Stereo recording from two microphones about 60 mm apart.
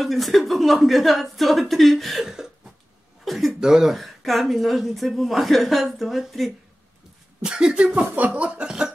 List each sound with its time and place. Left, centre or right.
0.0 s a woman's voice: centre
7.4 s speech: centre
8.1 s a sound: right